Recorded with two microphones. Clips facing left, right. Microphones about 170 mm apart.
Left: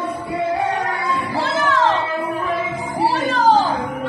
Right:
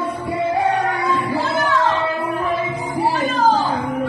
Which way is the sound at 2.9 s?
75° left (ahead or behind).